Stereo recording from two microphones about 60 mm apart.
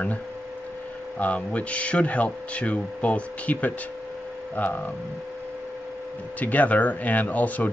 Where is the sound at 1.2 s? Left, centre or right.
Left.